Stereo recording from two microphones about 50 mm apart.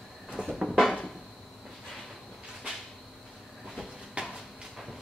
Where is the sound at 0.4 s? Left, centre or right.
Centre.